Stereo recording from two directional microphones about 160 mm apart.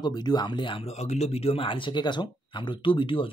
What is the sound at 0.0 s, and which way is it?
Speech, 25° left (ahead or behind).